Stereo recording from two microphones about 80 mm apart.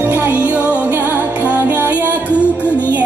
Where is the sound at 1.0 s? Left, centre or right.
Left.